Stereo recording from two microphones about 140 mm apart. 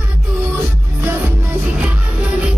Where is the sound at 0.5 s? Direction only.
15° right (ahead or behind).